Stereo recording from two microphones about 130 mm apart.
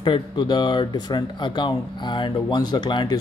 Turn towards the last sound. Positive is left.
turn(degrees=35)  # may be behind; listen again after turning